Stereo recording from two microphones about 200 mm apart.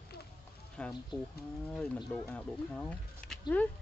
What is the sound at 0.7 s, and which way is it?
Speech, 5° left (ahead or behind).